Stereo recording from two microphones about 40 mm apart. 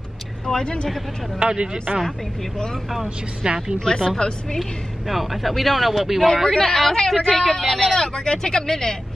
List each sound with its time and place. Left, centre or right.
0.5 s speech: centre
1.4 s speech: right
3.4 s speech: centre
3.8 s speech: centre
4.6 s speech: centre
6.2 s speech: centre
7.3 s speech: centre